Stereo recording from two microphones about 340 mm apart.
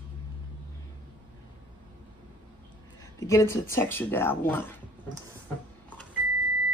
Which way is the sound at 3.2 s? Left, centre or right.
Centre.